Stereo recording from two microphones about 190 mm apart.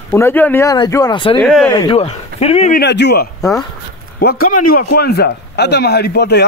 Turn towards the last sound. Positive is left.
turn(degrees=60)  # may be behind; listen again after turning